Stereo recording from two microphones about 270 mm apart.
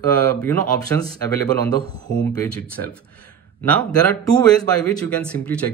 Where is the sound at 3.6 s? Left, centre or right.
Centre.